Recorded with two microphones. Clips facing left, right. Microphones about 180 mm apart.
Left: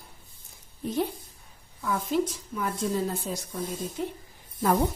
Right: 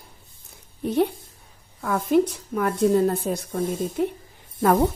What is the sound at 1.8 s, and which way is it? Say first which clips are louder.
A woman's voice: right 7 dB; 55° right (ahead or behind).